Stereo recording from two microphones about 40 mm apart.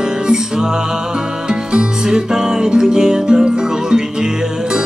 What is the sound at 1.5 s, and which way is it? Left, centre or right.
Music, centre.